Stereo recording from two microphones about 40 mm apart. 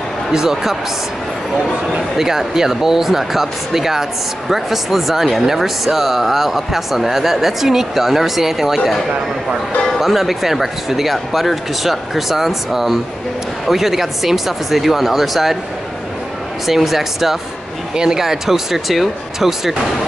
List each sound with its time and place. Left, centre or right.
0.3 s speech: centre
2.0 s speech: centre
16.6 s speech: centre
17.9 s speech: centre